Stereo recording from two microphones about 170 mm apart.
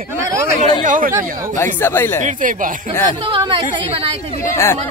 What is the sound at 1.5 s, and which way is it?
Speech, 15° left (ahead or behind).